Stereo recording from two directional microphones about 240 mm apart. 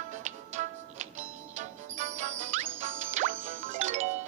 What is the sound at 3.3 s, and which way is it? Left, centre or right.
Music, right.